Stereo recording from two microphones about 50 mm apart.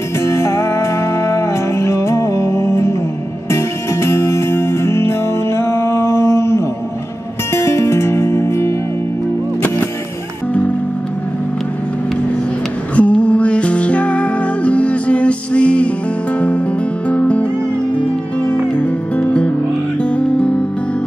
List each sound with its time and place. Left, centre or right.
0.2 s music: left
12.9 s music: left